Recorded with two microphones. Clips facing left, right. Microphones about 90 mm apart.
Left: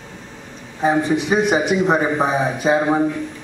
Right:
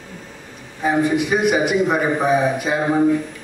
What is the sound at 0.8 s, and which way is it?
A man's voice, 25° left (ahead or behind).